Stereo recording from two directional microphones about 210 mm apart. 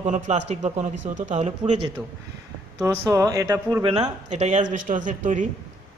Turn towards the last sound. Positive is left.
turn(degrees=-35)  # may be behind; listen again after turning